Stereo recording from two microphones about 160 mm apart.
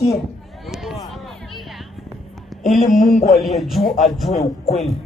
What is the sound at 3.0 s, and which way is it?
Speech, 60° left (ahead or behind).